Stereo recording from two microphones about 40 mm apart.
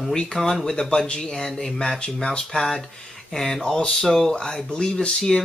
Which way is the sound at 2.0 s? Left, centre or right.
Left.